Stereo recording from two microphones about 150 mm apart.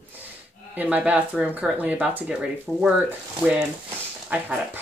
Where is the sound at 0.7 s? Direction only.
10° right (ahead or behind).